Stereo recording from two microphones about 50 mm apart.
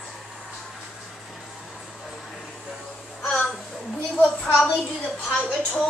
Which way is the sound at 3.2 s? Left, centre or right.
Centre.